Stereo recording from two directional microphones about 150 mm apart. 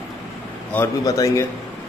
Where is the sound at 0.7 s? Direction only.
20° left (ahead or behind).